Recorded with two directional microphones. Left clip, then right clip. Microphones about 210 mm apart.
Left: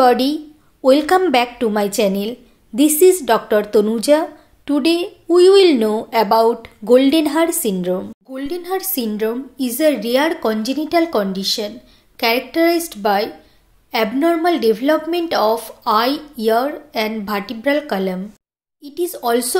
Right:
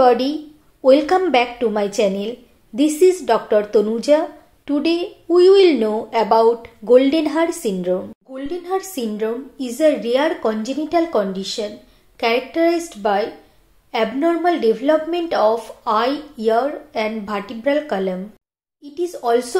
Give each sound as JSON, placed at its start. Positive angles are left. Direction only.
{"t": 0.0, "sound": "a woman's voice", "side_deg": 35}